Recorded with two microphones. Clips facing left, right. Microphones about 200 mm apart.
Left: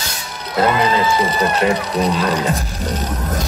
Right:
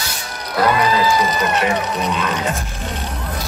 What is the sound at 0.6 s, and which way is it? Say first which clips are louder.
Speech: left 1 dB; 25° left (ahead or behind).